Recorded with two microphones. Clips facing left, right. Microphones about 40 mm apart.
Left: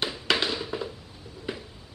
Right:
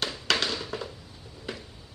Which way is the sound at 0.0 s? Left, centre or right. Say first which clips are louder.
Left 1 dB; centre.